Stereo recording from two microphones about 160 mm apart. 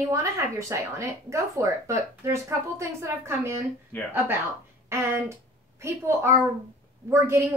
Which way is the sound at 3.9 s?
10° left (ahead or behind).